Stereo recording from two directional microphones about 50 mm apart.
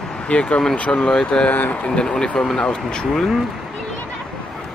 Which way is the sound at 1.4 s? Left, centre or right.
Left.